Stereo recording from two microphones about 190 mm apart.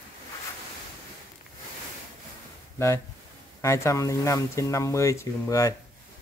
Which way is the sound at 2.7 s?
15° left (ahead or behind).